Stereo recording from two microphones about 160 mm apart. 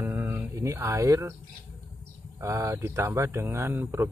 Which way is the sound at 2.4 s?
20° right (ahead or behind).